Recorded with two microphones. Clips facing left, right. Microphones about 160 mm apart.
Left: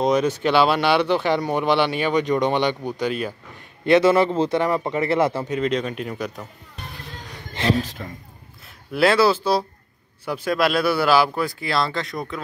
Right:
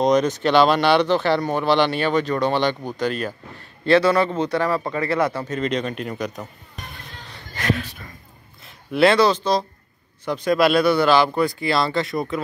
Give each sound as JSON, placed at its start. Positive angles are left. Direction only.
{"t": 0.0, "sound": "speech", "side_deg": 5}
{"t": 3.8, "sound": "a man's voice", "side_deg": 20}
{"t": 5.5, "sound": "speech", "side_deg": 5}
{"t": 7.5, "sound": "speech", "side_deg": 30}
{"t": 8.9, "sound": "speech", "side_deg": 5}